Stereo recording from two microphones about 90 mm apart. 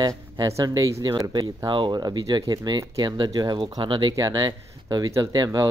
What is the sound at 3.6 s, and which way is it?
Speech, 65° right (ahead or behind).